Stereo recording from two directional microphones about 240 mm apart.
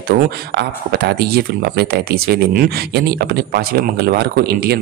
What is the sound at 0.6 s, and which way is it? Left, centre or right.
Speech, right.